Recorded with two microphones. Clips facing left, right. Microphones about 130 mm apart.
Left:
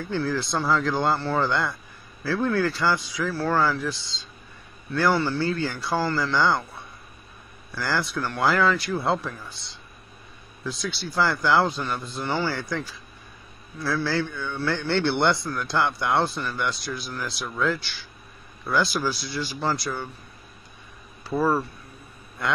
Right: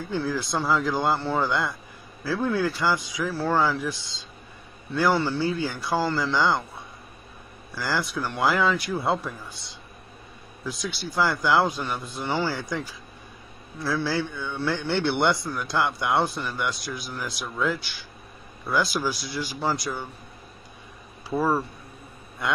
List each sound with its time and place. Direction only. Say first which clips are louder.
0.1 s speech: left 1 dB; 10° right (ahead or behind)
7.7 s speech: left 1 dB; 10° right (ahead or behind)
10.6 s speech: left 1 dB; 10° right (ahead or behind)
21.4 s speech: left 1 dB; 10° right (ahead or behind)